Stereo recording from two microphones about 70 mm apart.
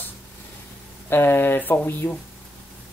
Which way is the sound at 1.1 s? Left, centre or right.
Left.